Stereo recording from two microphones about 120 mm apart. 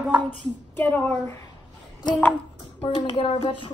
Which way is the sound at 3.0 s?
40° left (ahead or behind).